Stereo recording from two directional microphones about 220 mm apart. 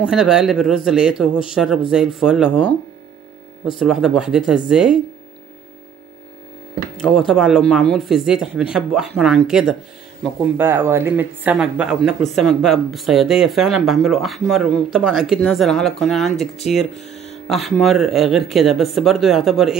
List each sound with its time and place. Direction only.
0.0 s speech: 5° right (ahead or behind)
3.7 s speech: centre (ahead or behind)
7.0 s speech: centre (ahead or behind)
17.0 s music: 30° left (ahead or behind)
17.5 s speech: centre (ahead or behind)